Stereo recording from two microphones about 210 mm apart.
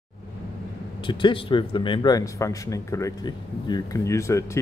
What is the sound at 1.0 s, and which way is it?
A man's voice, 25° left (ahead or behind).